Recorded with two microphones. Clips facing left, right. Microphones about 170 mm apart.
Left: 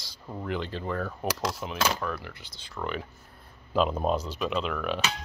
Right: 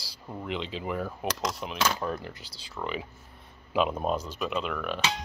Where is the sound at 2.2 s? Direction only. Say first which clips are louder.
Right 2 dB; 35° right (ahead or behind).